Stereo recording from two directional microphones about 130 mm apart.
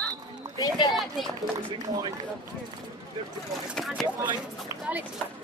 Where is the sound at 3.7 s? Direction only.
Centre (ahead or behind).